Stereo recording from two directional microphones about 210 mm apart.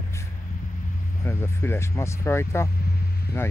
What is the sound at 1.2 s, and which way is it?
Speech, 10° left (ahead or behind).